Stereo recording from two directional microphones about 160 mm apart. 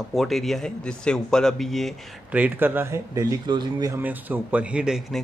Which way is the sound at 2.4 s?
10° right (ahead or behind).